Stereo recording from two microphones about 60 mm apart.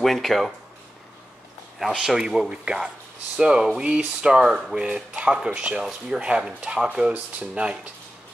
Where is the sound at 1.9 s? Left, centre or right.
Centre.